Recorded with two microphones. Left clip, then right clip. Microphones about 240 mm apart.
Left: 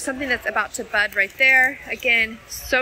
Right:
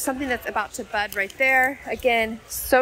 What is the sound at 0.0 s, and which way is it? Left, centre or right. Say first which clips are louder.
A woman's voice: left 2 dB; centre.